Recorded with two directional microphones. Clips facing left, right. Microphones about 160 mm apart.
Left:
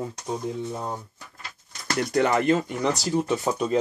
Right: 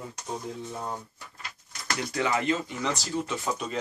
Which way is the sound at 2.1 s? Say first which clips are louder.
Left 6 dB; 55° left (ahead or behind).